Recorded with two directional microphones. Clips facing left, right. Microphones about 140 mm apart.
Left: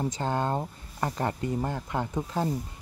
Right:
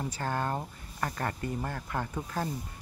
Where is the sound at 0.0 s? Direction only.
20° left (ahead or behind).